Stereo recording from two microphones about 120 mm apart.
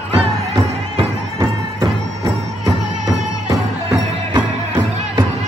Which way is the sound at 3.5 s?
30° right (ahead or behind).